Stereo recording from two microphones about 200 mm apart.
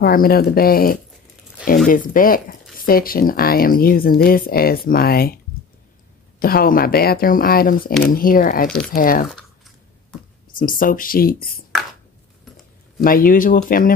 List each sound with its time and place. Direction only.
0.0 s speech: 45° left (ahead or behind)
6.4 s speech: 45° left (ahead or behind)
10.6 s speech: 45° left (ahead or behind)
13.0 s speech: 45° left (ahead or behind)